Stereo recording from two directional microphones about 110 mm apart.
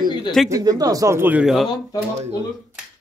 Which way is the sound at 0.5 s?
35° right (ahead or behind).